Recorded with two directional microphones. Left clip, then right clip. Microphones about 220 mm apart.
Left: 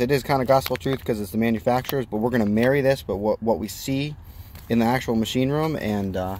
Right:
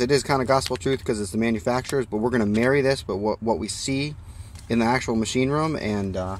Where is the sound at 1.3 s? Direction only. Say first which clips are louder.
Left 2 dB; 15° left (ahead or behind).